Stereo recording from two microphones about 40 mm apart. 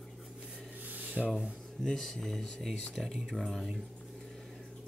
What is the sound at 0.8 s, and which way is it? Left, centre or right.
Rub, right.